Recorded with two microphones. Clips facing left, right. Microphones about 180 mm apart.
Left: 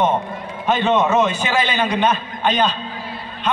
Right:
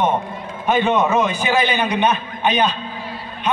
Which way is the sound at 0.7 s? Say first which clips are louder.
Even; 10° right (ahead or behind).